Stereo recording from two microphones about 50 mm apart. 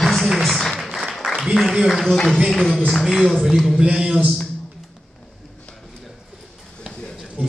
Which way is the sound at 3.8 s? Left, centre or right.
Centre.